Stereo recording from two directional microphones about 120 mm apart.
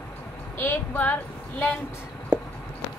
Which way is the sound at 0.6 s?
15° left (ahead or behind).